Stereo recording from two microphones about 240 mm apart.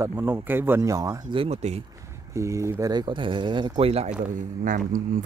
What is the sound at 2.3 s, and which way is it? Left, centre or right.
Speech, centre.